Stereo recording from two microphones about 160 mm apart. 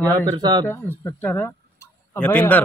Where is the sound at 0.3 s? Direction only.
25° right (ahead or behind).